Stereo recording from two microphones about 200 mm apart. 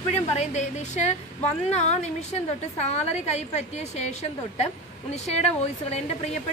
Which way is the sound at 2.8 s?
35° left (ahead or behind).